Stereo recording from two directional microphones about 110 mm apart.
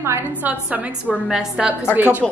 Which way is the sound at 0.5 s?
10° right (ahead or behind).